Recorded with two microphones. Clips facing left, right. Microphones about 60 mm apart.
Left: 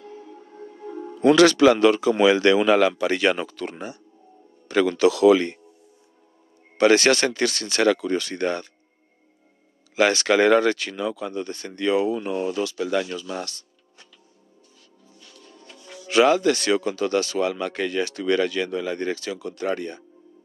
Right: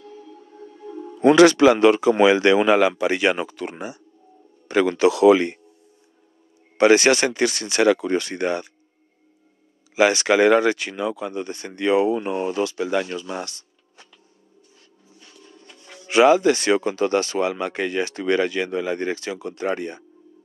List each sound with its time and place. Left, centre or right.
0.0 s music: left
1.2 s speech: right
6.8 s speech: centre
9.9 s speech: centre
15.1 s music: right
16.1 s speech: right